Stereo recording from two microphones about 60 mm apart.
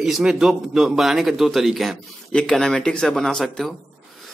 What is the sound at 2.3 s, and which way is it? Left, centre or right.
Speech, centre.